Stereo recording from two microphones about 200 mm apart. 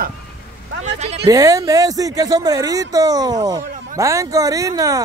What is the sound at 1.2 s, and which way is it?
Speech, 20° right (ahead or behind).